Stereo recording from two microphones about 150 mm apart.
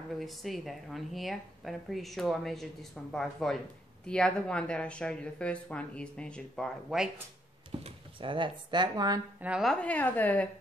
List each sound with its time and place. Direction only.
0.2 s speech: centre (ahead or behind)
7.8 s speech: 35° right (ahead or behind)
9.4 s speech: 5° right (ahead or behind)